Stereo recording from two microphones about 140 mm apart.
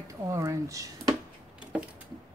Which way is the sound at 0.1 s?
20° right (ahead or behind).